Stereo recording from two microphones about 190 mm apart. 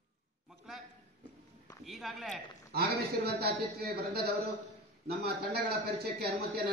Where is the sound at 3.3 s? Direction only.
55° right (ahead or behind).